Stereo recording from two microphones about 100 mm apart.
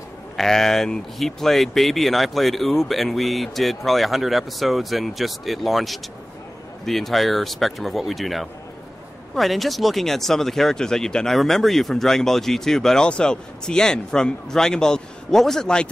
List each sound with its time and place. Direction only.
0.4 s speech: 5° left (ahead or behind)